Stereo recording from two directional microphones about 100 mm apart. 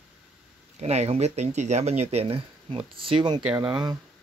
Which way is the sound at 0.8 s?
90° right.